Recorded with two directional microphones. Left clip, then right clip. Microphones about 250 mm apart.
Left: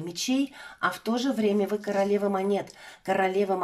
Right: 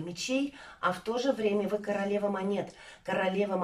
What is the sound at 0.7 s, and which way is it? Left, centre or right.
Speech, left.